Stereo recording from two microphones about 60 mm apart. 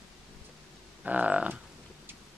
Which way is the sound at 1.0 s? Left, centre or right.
Right.